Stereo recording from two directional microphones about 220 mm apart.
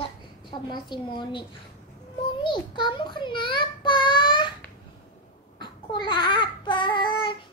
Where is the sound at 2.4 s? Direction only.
20° left (ahead or behind).